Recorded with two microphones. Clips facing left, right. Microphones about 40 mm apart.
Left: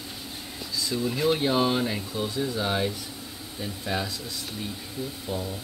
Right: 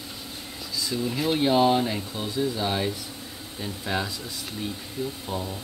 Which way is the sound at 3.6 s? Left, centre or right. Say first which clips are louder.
Right 1 dB; centre.